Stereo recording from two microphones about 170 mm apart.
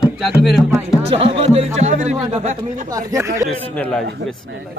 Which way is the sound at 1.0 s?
35° right (ahead or behind).